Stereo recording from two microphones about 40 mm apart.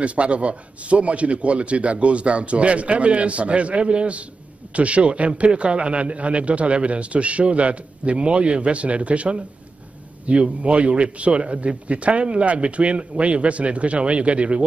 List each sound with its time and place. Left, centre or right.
0.0 s a man's voice: right